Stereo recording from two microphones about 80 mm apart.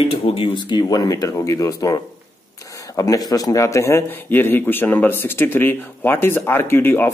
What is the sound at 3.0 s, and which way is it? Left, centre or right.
Speech, left.